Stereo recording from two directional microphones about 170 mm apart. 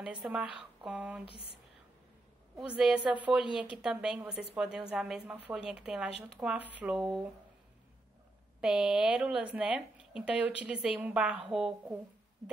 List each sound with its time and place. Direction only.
0.0 s a woman's voice: 5° right (ahead or behind)
2.6 s speech: 5° right (ahead or behind)
4.3 s a woman's voice: 75° right (ahead or behind)
4.6 s speech: 5° right (ahead or behind)
8.5 s a woman's voice: 5° right (ahead or behind)